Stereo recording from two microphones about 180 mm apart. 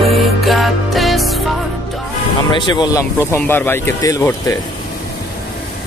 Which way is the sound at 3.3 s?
10° left (ahead or behind).